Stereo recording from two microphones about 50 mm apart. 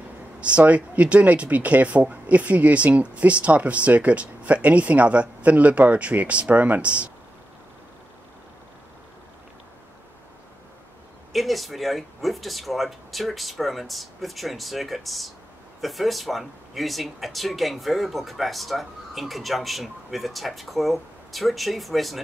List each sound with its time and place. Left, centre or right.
0.4 s speech: right
11.3 s speech: centre